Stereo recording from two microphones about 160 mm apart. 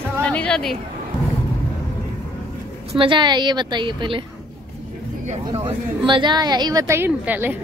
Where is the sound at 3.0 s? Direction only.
30° right (ahead or behind).